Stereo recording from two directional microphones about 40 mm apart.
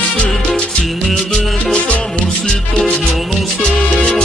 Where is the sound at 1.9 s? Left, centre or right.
Left.